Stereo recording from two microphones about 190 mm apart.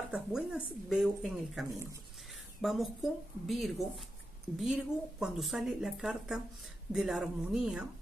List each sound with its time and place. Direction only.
0.1 s speech: 5° right (ahead or behind)
1.7 s speech: 15° right (ahead or behind)
2.6 s speech: centre (ahead or behind)